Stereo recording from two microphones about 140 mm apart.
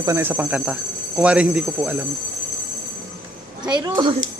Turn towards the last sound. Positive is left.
turn(degrees=-30)  # may be behind; listen again after turning